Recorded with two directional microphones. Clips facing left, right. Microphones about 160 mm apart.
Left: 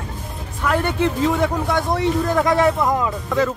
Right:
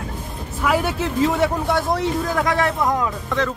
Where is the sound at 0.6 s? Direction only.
5° right (ahead or behind).